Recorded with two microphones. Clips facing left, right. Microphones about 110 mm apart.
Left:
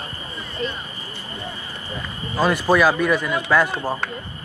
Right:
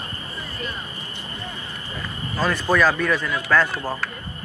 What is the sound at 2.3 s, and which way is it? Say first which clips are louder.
Speech: left 3 dB; 10° left (ahead or behind).